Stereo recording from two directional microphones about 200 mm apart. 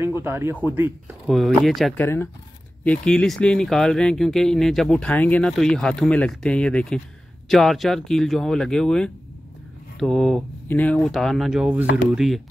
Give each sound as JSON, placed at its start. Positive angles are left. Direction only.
{"t": 0.0, "sound": "speech", "side_deg": -10}